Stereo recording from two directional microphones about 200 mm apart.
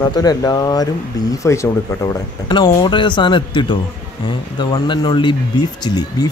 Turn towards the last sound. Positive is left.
turn(degrees=20)  # may be behind; listen again after turning